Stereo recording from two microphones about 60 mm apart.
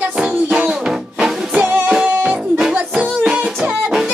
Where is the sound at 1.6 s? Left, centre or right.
Right.